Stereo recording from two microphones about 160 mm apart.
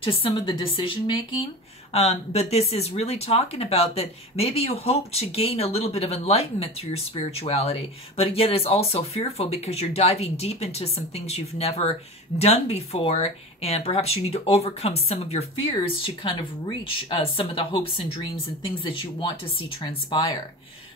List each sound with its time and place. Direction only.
0.0 s speech: 35° left (ahead or behind)